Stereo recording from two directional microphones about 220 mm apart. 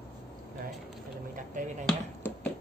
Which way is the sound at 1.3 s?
35° right (ahead or behind).